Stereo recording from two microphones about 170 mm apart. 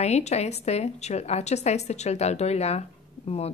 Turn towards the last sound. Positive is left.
turn(degrees=40)  # may be behind; listen again after turning